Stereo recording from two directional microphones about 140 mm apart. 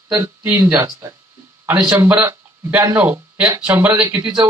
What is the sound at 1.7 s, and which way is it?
Speech, 10° right (ahead or behind).